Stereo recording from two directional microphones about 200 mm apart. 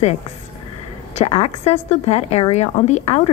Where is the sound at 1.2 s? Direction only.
30° left (ahead or behind).